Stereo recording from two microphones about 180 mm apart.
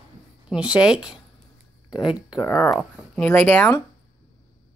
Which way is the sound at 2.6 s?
5° left (ahead or behind).